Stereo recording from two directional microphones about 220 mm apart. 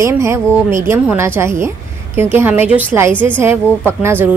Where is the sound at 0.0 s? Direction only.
15° right (ahead or behind).